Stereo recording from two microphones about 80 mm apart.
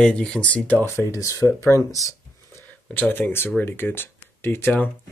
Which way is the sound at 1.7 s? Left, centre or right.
Right.